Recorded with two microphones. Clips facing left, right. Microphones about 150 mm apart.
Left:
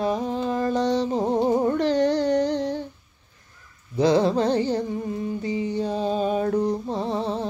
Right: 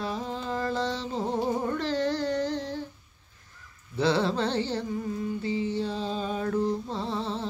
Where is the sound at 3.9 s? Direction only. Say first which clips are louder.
Left 6 dB; 15° left (ahead or behind).